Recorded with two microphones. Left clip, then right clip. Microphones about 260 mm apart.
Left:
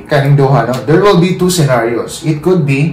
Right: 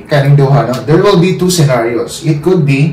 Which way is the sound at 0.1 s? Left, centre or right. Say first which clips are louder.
Even; centre.